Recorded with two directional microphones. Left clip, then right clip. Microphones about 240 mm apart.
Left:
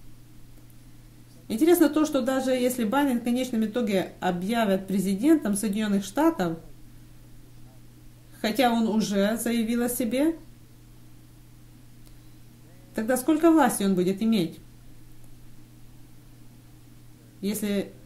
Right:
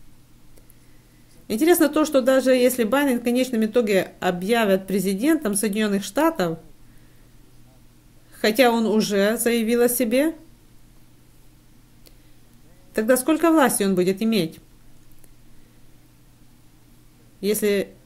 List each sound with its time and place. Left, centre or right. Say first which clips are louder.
1.5 s speech: right 3 dB; right
8.4 s speech: right 6 dB; right
12.9 s speech: right 5 dB; right
17.4 s speech: right 9 dB; right